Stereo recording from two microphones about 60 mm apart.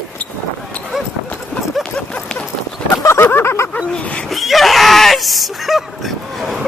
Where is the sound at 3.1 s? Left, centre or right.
Left.